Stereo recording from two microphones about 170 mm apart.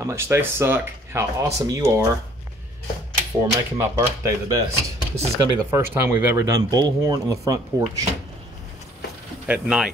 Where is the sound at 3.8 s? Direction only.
15° right (ahead or behind).